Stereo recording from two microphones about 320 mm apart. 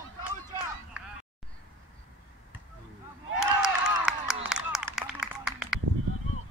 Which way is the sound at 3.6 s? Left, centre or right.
Centre.